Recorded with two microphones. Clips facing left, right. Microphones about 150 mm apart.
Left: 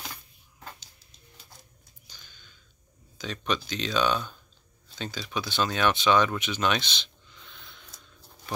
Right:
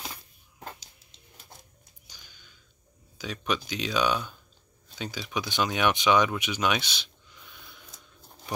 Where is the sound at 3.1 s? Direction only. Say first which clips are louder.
Even; 10° right (ahead or behind).